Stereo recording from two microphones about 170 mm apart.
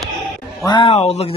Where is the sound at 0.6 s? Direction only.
25° left (ahead or behind).